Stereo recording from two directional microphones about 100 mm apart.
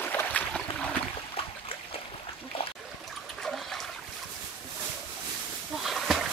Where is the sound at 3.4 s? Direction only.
5° left (ahead or behind).